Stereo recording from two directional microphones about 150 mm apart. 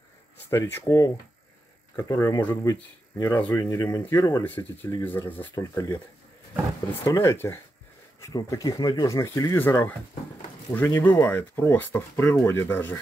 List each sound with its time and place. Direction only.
0.5 s speech: 15° left (ahead or behind)
5.5 s speech: 25° left (ahead or behind)
7.1 s speech: 20° left (ahead or behind)